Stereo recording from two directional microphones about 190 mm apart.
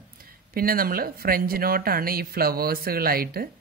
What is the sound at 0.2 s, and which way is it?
Speech, 50° right (ahead or behind).